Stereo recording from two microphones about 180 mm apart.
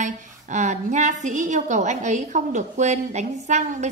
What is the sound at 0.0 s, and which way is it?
A woman's voice, 45° right (ahead or behind).